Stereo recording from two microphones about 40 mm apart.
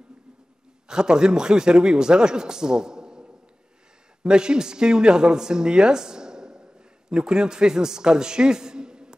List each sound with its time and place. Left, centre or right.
0.8 s a man's voice: centre